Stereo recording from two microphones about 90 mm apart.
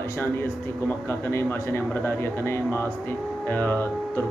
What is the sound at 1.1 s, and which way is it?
Speech, 30° left (ahead or behind).